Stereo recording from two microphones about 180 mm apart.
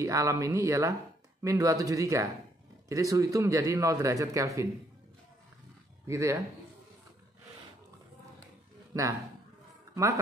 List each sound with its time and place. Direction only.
0.0 s a man's voice: 15° right (ahead or behind)
6.0 s a man's voice: 15° right (ahead or behind)
8.9 s speech: 20° right (ahead or behind)